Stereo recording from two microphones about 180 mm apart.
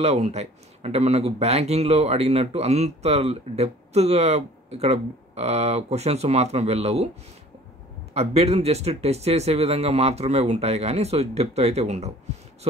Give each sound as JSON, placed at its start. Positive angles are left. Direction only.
{"t": 0.0, "sound": "speech", "side_deg": -35}
{"t": 8.1, "sound": "speech", "side_deg": -35}